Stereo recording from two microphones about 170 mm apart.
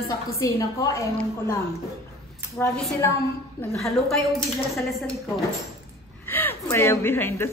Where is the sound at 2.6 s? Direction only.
10° left (ahead or behind).